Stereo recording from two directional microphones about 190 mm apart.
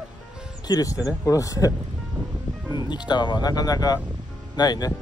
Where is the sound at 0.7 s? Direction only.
20° left (ahead or behind).